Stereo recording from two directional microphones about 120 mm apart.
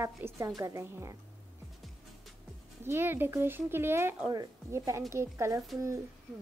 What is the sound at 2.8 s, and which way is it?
A woman's voice, 20° right (ahead or behind).